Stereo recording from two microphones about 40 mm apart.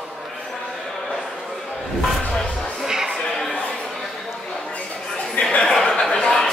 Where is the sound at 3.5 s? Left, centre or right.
Left.